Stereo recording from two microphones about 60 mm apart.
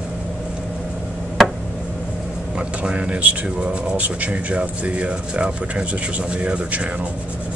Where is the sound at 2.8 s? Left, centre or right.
Centre.